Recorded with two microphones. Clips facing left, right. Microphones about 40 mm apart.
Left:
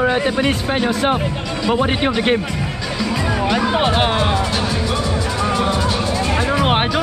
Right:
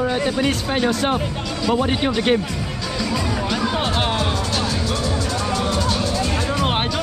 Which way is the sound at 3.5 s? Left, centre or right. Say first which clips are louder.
Left 5 dB; centre.